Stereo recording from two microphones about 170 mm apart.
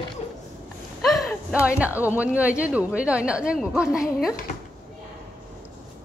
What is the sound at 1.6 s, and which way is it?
A woman's voice, 10° right (ahead or behind).